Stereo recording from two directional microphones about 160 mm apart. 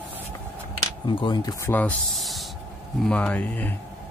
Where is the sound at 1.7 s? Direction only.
10° left (ahead or behind).